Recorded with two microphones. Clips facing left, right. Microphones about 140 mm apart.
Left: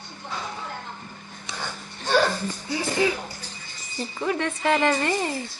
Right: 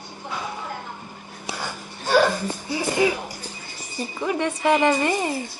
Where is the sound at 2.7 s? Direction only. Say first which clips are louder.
Right 2 dB; 15° right (ahead or behind).